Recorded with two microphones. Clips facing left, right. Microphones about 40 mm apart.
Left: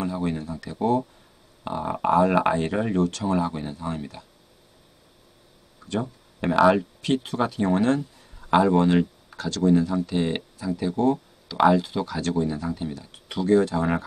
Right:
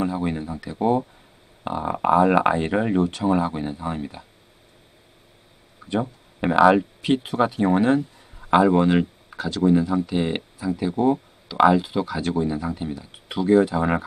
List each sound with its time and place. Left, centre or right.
0.0 s speech: centre
5.9 s speech: centre